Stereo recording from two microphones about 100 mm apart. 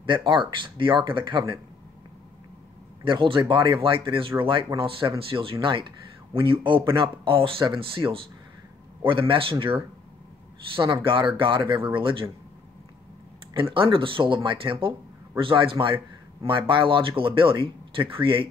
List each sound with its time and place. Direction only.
0.0 s speech: 55° right (ahead or behind)
3.0 s speech: 55° right (ahead or behind)
11.1 s speech: 60° right (ahead or behind)
13.6 s speech: 60° right (ahead or behind)